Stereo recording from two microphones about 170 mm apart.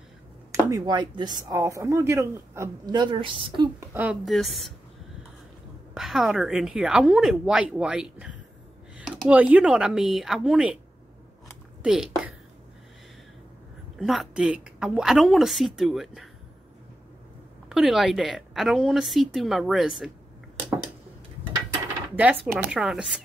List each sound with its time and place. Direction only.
0.5 s speech: 20° right (ahead or behind)
3.8 s a woman's voice: 10° right (ahead or behind)
5.9 s a woman's voice: centre (ahead or behind)
11.4 s a sound: 5° right (ahead or behind)
13.9 s a woman's voice: centre (ahead or behind)
17.6 s a woman's voice: centre (ahead or behind)
22.1 s a woman's voice: 10° right (ahead or behind)